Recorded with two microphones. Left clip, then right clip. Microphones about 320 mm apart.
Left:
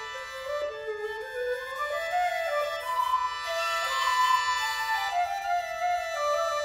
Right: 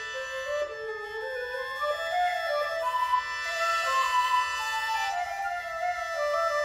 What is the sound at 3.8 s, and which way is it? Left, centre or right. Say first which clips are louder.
Music: left 2 dB; right.